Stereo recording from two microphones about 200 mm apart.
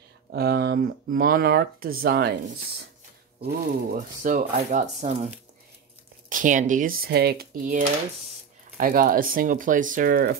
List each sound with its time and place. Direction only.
0.3 s speech: 55° right (ahead or behind)
3.4 s speech: 45° right (ahead or behind)